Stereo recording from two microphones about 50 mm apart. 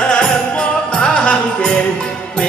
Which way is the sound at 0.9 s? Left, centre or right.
Left.